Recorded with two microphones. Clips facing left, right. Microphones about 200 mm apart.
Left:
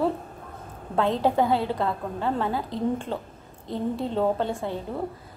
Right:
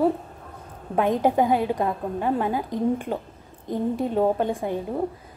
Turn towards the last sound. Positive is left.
turn(degrees=-15)  # may be behind; listen again after turning